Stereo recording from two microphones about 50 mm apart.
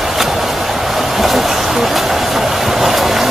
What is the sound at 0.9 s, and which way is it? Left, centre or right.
Train, centre.